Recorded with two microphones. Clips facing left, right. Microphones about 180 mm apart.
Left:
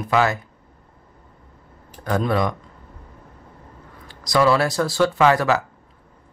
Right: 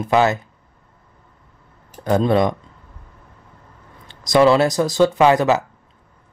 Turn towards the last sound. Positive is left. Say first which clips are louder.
# right 3 dB
turn(degrees=-20)  # may be behind; listen again after turning